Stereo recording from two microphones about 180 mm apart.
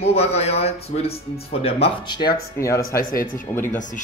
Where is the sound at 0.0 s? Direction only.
35° left (ahead or behind).